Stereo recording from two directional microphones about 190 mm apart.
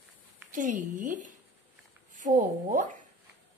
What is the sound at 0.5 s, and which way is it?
A woman's voice, 45° right (ahead or behind).